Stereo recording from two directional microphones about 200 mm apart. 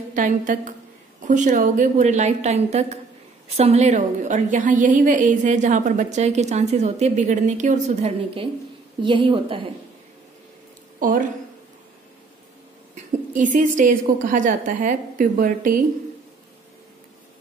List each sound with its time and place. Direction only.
0.1 s a woman's voice: 40° right (ahead or behind)
11.0 s a woman's voice: 40° right (ahead or behind)
12.9 s a woman's voice: 40° right (ahead or behind)